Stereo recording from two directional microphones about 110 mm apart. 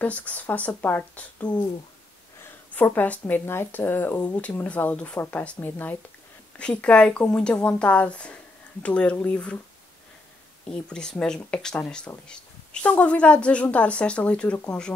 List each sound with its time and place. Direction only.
0.0 s speech: 15° left (ahead or behind)
2.7 s speech: 15° left (ahead or behind)
10.7 s speech: 5° left (ahead or behind)